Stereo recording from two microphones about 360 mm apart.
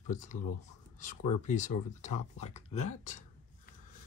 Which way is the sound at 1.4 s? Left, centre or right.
Centre.